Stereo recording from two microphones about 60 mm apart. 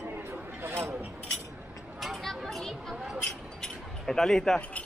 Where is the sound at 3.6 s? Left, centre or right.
Centre.